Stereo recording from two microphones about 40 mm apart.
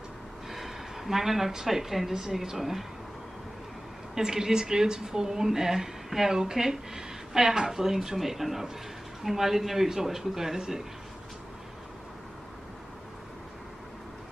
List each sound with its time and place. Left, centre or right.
0.5 s speech: centre
4.1 s a woman's voice: centre